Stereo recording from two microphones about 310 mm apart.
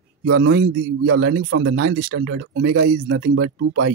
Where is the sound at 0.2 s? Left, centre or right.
Right.